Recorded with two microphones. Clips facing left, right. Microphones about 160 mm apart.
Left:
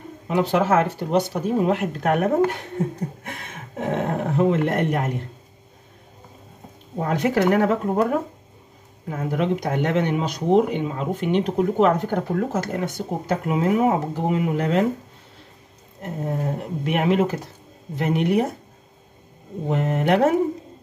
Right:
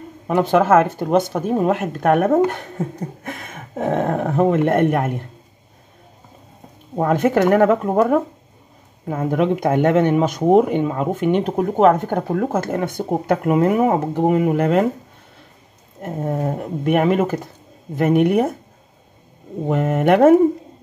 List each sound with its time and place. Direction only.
0.3 s speech: 50° right (ahead or behind)
7.0 s speech: 50° right (ahead or behind)
9.1 s speech: 55° right (ahead or behind)
16.3 s speech: 50° right (ahead or behind)
19.7 s speech: 50° right (ahead or behind)